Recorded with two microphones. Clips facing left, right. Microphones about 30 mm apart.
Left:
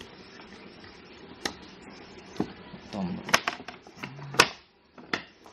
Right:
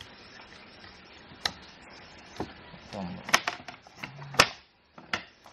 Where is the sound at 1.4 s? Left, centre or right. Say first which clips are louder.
Right 1 dB; centre.